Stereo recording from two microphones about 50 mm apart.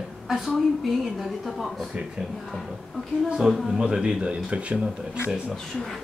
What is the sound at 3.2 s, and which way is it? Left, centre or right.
Speech, centre.